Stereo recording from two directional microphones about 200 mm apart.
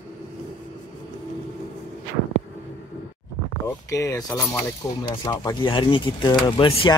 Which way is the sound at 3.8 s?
15° left (ahead or behind).